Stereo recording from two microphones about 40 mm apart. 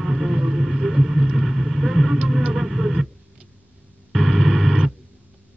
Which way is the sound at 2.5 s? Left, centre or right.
Centre.